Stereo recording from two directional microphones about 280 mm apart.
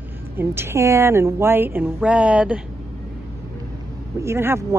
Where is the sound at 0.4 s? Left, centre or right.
Centre.